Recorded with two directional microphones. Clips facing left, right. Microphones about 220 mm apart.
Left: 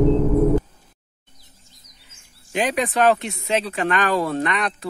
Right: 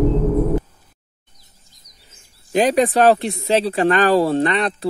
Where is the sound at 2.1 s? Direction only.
35° right (ahead or behind).